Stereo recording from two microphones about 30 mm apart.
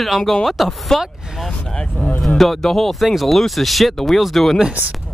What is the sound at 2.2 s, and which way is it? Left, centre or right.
Speech, centre.